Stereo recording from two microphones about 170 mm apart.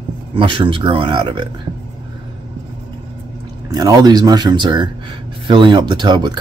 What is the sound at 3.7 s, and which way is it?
Speech, 20° right (ahead or behind).